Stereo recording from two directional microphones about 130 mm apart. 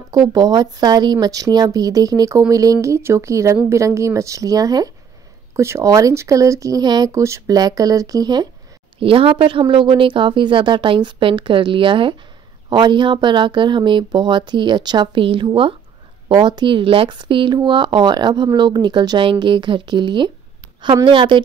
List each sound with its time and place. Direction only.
0.3 s speech: 30° right (ahead or behind)
9.0 s speech: 45° right (ahead or behind)